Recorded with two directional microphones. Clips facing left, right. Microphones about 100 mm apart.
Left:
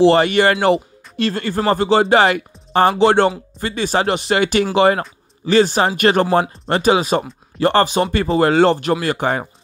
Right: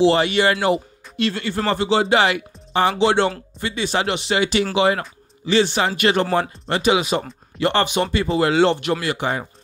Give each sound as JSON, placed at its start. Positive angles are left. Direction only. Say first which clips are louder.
{"t": 0.0, "sound": "speech", "louder": "left 4 dB", "side_deg": 50}